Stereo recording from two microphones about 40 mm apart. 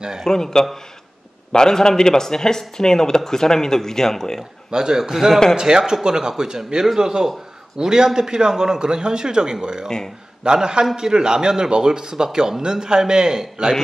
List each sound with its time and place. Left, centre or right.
0.2 s speech: centre
4.6 s speech: centre
9.8 s speech: centre
10.4 s a man's voice: centre